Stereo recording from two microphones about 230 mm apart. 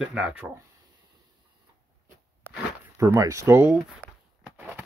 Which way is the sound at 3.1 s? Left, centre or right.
Centre.